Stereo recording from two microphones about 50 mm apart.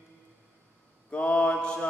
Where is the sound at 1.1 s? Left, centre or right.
Left.